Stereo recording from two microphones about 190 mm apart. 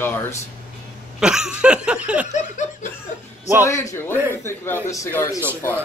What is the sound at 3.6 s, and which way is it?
A man's voice, 15° left (ahead or behind).